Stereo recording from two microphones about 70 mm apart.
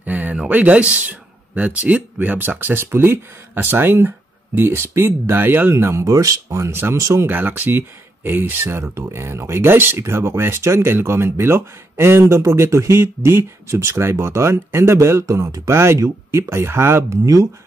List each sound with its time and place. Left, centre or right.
0.0 s speech: right
15.8 s speech: right
17.1 s speech: right